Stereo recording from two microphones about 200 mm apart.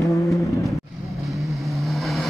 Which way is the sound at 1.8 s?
Centre (ahead or behind).